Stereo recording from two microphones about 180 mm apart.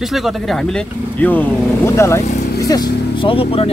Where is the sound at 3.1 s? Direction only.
30° left (ahead or behind).